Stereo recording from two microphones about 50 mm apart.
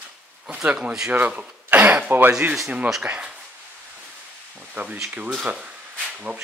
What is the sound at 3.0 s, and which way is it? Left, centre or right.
Speech, right.